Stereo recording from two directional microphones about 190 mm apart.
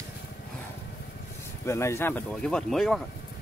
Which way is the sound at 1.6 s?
15° left (ahead or behind).